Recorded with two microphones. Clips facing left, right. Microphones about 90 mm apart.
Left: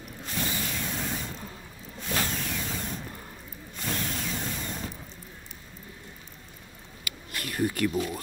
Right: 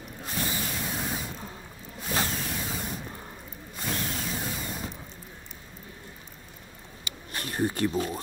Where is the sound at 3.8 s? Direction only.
10° right (ahead or behind).